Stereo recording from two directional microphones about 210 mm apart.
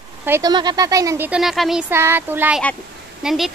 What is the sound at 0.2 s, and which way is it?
Speech, 15° right (ahead or behind).